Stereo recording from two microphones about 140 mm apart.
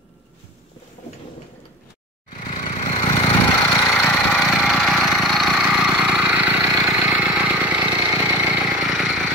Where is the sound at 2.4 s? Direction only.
50° left (ahead or behind).